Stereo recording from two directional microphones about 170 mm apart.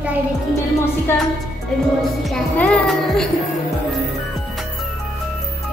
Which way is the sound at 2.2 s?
5° left (ahead or behind).